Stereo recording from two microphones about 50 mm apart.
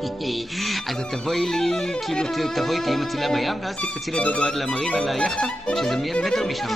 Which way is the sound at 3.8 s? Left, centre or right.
Left.